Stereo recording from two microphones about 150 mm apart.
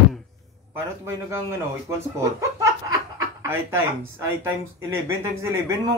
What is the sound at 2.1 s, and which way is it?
Speech, 20° right (ahead or behind).